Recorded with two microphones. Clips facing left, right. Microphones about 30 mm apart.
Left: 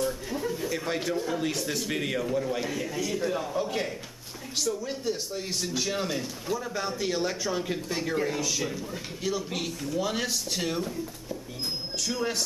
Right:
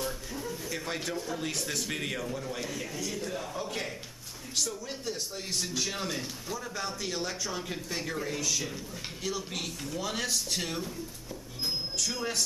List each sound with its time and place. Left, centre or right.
0.3 s a sound: left
0.7 s a man's voice: centre
12.0 s a man's voice: centre